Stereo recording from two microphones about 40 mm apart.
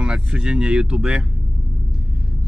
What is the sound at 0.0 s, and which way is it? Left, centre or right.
Speech, right.